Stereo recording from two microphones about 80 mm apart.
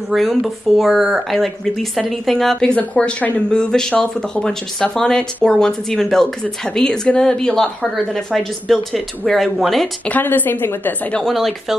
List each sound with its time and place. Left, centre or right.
0.1 s speech: centre
10.0 s a woman's voice: left
11.1 s speech: centre